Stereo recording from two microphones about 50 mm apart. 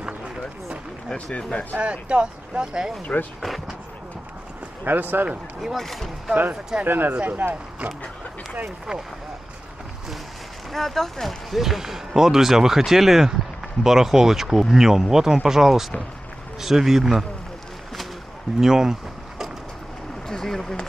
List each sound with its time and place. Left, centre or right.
1.1 s speech: left
1.8 s speech: right
3.1 s speech: left
3.4 s speech: centre
4.8 s speech: right
5.6 s speech: centre
6.8 s speech: right
10.7 s speech: centre
18.6 s boat: centre
20.2 s speech: centre